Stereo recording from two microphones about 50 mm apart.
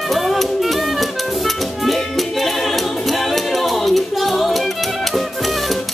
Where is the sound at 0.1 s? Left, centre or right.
Centre.